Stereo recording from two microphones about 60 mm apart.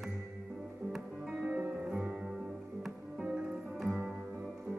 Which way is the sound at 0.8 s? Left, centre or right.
Right.